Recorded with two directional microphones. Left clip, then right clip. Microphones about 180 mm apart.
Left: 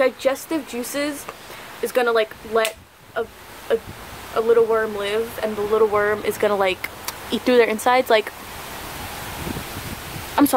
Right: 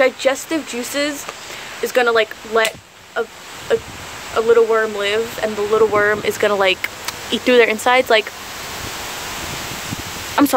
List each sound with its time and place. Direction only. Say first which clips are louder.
0.0 s speech: right 4 dB; 5° left (ahead or behind)
10.4 s speech: right 2 dB; 10° left (ahead or behind)